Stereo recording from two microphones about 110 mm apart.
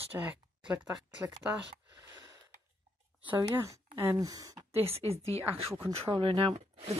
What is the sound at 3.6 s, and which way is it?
Speech, 30° right (ahead or behind).